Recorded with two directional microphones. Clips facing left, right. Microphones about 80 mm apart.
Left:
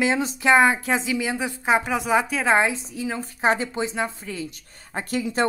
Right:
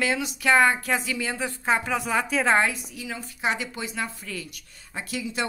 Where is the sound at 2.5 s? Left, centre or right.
Left.